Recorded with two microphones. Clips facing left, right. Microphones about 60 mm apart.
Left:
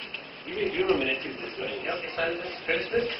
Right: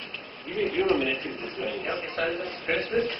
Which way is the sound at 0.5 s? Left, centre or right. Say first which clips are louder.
Right 1 dB; centre.